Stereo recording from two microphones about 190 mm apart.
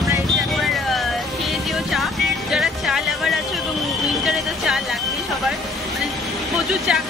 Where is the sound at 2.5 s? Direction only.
Centre (ahead or behind).